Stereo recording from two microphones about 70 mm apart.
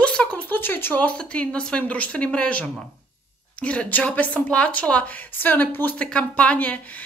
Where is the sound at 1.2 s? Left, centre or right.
Centre.